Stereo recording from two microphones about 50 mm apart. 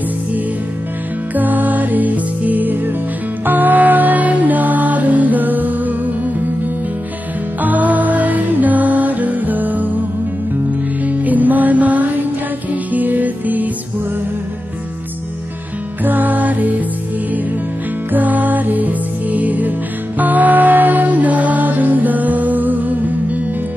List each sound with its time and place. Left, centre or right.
1.3 s music: right
7.6 s music: right
11.1 s music: right
16.0 s music: right
18.1 s music: right